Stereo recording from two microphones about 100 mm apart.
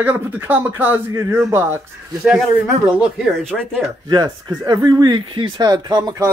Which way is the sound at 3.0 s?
5° right (ahead or behind).